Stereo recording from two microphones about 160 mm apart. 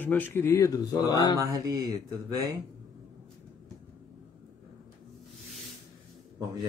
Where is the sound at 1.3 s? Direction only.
20° right (ahead or behind).